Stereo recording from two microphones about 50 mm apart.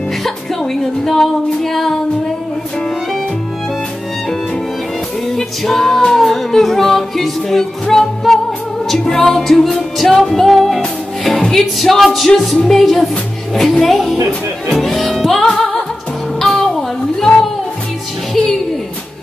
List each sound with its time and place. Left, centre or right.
1.0 s music: centre
5.3 s music: centre
18.3 s music: centre